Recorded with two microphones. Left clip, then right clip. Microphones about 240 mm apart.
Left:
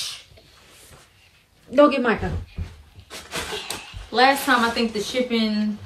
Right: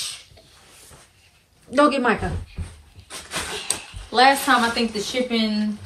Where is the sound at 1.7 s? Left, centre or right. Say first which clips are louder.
Left 1 dB; centre.